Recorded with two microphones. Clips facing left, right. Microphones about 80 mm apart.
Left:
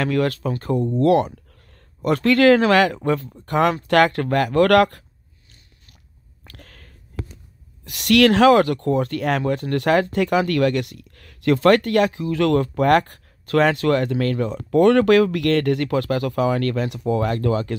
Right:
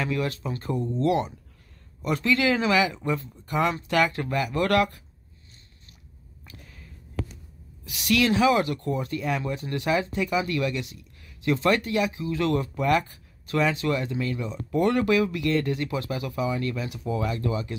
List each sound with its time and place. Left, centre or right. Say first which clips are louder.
0.0 s speech: left 7 dB; left
6.5 s a sound: left 3 dB; left
7.8 s speech: left 8 dB; left
12.1 s speech: left 6 dB; centre
12.7 s speech: left 7 dB; left